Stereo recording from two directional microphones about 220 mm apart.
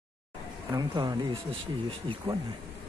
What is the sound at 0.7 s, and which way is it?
Speech, 20° right (ahead or behind).